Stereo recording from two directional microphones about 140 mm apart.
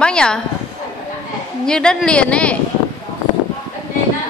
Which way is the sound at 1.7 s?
5° left (ahead or behind).